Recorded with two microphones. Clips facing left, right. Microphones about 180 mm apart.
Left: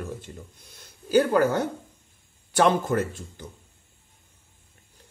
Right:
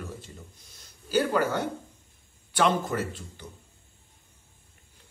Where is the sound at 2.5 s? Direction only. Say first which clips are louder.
Left 4 dB; 50° left (ahead or behind).